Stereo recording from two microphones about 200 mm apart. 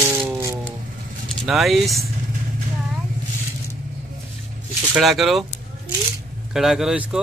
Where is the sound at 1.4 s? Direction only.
Centre (ahead or behind).